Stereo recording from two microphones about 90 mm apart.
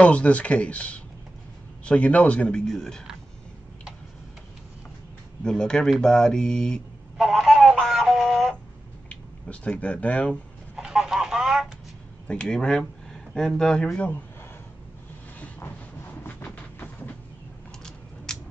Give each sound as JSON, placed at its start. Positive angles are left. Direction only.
{"t": 0.0, "sound": "speech", "side_deg": 15}
{"t": 5.4, "sound": "speech", "side_deg": 10}
{"t": 7.2, "sound": "a sound", "side_deg": 0}
{"t": 9.1, "sound": "speech", "side_deg": 15}
{"t": 10.8, "sound": "a sound", "side_deg": -5}
{"t": 12.3, "sound": "a man's voice", "side_deg": 10}
{"t": 15.3, "sound": "vehicle", "side_deg": 15}
{"t": 17.8, "sound": "scissors", "side_deg": 5}